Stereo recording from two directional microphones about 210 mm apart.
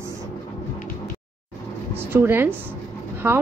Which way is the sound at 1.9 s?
10° right (ahead or behind).